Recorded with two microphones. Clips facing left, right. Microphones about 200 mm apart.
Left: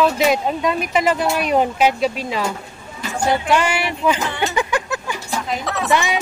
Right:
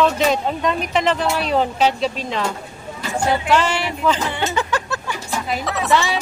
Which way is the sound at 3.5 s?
10° left (ahead or behind).